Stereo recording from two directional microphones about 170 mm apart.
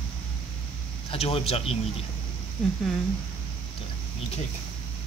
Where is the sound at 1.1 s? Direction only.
35° left (ahead or behind).